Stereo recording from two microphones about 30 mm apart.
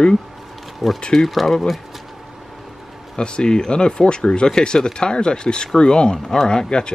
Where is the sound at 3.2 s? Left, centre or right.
Left.